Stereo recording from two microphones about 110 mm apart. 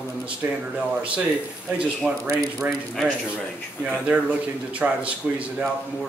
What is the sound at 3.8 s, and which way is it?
Speech, 10° right (ahead or behind).